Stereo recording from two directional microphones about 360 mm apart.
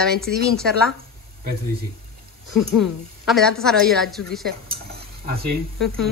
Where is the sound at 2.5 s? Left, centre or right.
Centre.